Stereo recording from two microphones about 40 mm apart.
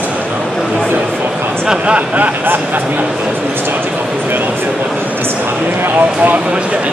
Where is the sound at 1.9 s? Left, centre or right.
Right.